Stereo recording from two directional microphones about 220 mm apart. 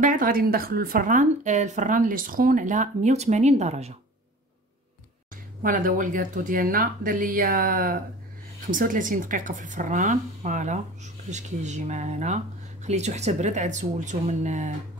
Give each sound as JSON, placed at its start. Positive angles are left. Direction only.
{"t": 0.0, "sound": "speech", "side_deg": -40}
{"t": 5.3, "sound": "speech", "side_deg": -40}